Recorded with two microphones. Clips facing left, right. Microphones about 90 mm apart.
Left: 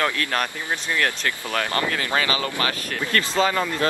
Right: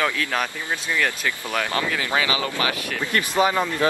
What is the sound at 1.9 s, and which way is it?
Speech, 15° right (ahead or behind).